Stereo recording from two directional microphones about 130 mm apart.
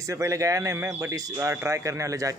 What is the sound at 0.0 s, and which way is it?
Speech, 25° right (ahead or behind).